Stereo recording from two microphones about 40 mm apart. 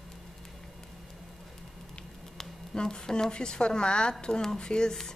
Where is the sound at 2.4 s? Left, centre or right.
Centre.